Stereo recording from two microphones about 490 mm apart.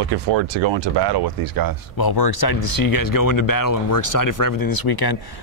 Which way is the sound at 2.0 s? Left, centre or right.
Left.